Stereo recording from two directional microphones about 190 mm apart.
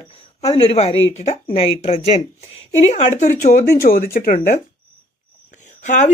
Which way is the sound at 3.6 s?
50° left (ahead or behind).